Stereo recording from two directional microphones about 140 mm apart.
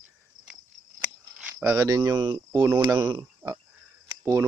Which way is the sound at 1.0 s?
15° right (ahead or behind).